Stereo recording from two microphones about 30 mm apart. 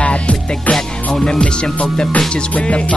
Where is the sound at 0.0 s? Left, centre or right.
Left.